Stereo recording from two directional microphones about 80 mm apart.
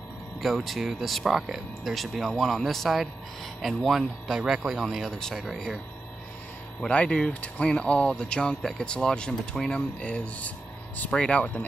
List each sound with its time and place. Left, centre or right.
0.4 s speech: centre
6.8 s speech: centre